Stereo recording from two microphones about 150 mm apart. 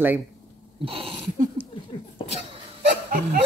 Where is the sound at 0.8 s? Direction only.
35° right (ahead or behind).